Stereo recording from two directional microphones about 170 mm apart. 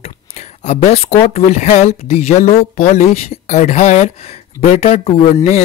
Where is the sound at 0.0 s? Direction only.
40° left (ahead or behind).